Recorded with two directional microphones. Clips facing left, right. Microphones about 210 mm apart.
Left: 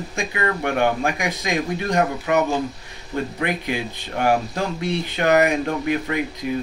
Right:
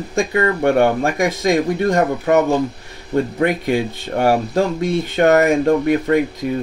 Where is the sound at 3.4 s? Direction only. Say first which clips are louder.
Right 7 dB; 50° right (ahead or behind).